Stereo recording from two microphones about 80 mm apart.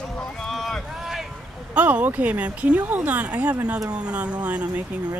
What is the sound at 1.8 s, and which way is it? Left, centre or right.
Speech, centre.